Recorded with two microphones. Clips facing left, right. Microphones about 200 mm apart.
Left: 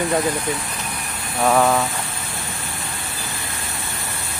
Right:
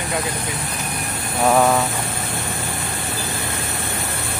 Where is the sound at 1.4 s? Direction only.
5° right (ahead or behind).